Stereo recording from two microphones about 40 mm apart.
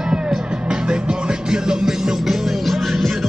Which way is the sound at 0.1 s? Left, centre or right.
Right.